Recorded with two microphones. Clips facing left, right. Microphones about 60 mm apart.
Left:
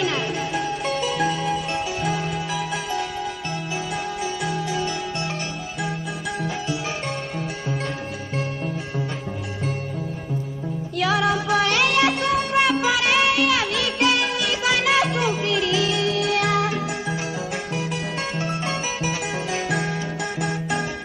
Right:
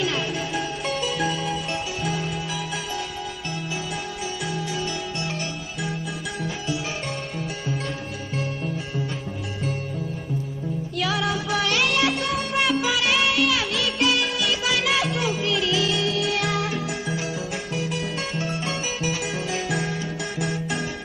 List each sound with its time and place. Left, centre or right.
0.9 s music: left
4.2 s music: left
11.0 s music: left
18.4 s music: left